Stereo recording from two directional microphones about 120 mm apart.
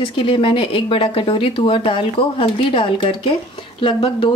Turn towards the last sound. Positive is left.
turn(degrees=45)  # may be behind; listen again after turning